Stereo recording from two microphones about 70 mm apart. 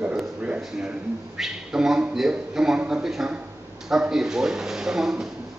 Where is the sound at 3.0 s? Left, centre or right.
Centre.